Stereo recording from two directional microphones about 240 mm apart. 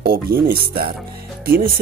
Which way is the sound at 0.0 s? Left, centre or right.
Right.